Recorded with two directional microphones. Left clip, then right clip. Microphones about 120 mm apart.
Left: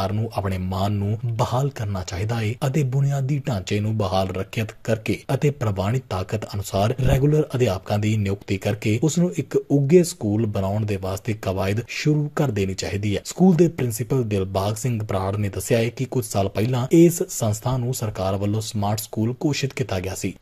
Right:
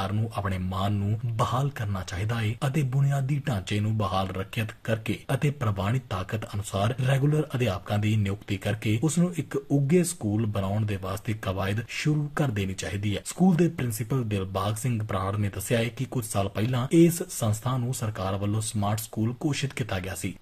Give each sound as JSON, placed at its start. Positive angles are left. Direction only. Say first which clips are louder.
{"t": 0.0, "sound": "speech", "louder": "left 5 dB", "side_deg": 45}
{"t": 9.0, "sound": "speech", "louder": "left 6 dB", "side_deg": 30}
{"t": 13.4, "sound": "speech", "louder": "left 7 dB", "side_deg": 35}